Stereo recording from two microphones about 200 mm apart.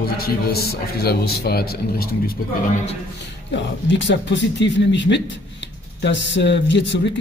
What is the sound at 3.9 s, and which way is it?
Speech, 65° left (ahead or behind).